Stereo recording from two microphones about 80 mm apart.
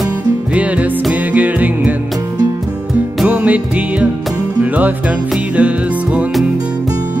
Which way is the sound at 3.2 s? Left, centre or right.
Centre.